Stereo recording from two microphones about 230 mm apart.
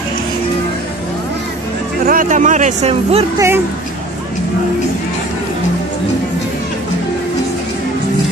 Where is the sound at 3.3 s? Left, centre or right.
Centre.